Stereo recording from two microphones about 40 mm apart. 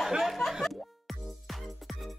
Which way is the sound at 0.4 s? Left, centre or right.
Centre.